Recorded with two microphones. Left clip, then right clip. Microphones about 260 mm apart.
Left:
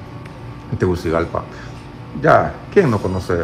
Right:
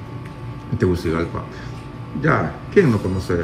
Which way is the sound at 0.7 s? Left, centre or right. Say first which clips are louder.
Left 3 dB; centre.